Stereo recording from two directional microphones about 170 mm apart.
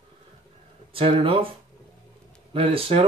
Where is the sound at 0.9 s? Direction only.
30° right (ahead or behind).